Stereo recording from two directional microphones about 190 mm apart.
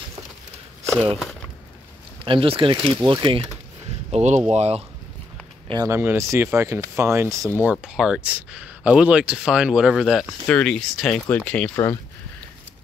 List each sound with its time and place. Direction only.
2.2 s speech: 30° right (ahead or behind)
4.1 s speech: 35° right (ahead or behind)
5.7 s speech: 15° right (ahead or behind); by 12.0 s 15° left (ahead or behind)